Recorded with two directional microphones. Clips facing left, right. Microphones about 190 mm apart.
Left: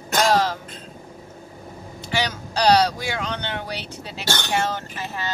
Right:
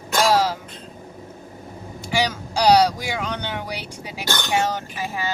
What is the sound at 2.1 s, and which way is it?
Speech, 10° right (ahead or behind).